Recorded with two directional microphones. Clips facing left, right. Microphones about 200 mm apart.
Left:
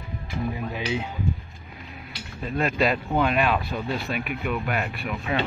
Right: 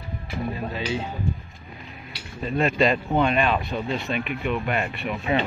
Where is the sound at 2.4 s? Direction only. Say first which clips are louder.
Right 2 dB; centre (ahead or behind).